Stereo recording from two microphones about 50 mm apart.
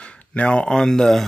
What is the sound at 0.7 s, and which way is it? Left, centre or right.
Speech, centre.